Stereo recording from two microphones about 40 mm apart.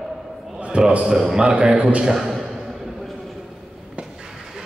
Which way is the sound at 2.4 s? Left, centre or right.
Centre.